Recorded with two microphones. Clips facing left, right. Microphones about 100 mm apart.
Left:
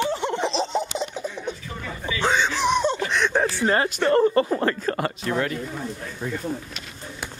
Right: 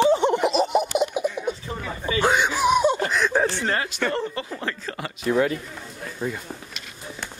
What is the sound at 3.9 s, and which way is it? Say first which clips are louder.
Speech: left 7 dB; 45° left (ahead or behind).